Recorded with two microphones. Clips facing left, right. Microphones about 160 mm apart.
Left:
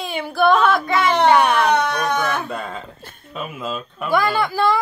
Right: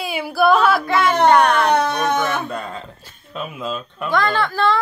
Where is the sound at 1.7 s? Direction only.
30° right (ahead or behind).